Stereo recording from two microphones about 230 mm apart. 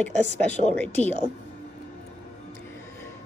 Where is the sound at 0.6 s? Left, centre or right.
Left.